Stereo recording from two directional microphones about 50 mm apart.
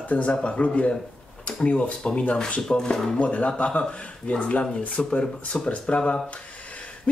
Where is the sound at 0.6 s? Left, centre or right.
Left.